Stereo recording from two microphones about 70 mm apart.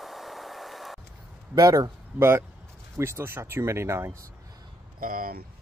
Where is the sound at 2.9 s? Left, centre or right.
Right.